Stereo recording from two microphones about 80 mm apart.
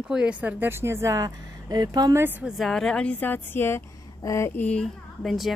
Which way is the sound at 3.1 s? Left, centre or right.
Left.